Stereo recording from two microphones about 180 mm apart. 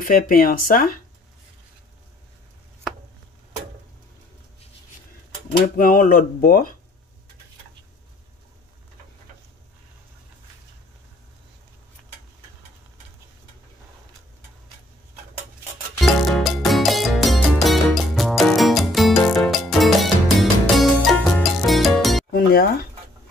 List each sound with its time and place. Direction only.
0.0 s speech: 55° left (ahead or behind)
5.8 s speech: 50° left (ahead or behind)
16.0 s music: centre (ahead or behind)
22.3 s music: 55° left (ahead or behind)